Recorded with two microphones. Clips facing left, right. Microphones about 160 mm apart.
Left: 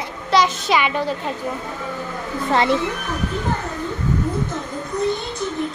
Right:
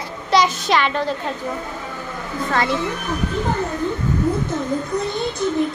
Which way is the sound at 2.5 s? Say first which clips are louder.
Left 3 dB; 25° left (ahead or behind).